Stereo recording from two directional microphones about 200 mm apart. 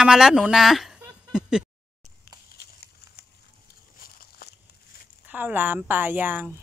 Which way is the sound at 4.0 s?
50° left (ahead or behind).